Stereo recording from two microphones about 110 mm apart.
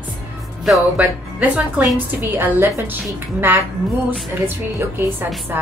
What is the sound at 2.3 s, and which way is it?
A woman's voice, 20° right (ahead or behind).